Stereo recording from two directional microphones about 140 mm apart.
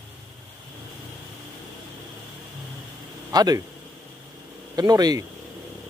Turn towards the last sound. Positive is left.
turn(degrees=-25)  # may be behind; listen again after turning